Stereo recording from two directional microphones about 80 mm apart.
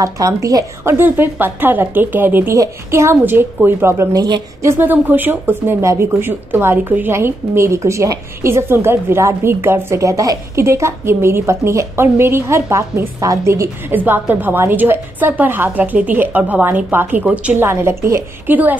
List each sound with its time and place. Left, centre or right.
0.0 s a woman's voice: right
0.8 s a woman's voice: right
2.5 s speech: right
4.1 s a woman's voice: right
4.6 s speech: right
10.6 s speech: right
13.5 s a woman's voice: right
17.6 s speech: right
18.5 s a woman's voice: right